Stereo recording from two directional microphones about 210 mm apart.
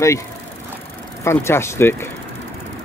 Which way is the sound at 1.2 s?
10° left (ahead or behind).